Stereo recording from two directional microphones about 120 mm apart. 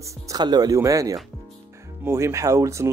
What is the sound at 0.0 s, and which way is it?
Speech, 30° right (ahead or behind).